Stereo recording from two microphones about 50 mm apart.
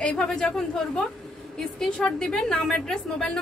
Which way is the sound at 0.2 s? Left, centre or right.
Centre.